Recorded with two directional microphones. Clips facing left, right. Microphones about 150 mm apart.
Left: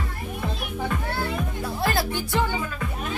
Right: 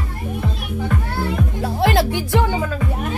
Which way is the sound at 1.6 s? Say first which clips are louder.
Right 8 dB; 80° right.